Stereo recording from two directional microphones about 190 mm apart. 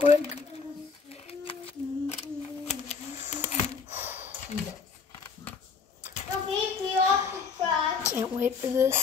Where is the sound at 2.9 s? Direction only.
35° left (ahead or behind).